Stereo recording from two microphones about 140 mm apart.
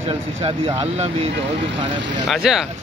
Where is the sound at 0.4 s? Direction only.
45° right (ahead or behind).